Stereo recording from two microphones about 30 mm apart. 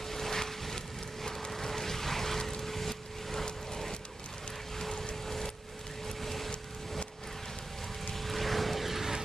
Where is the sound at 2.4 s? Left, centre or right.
Centre.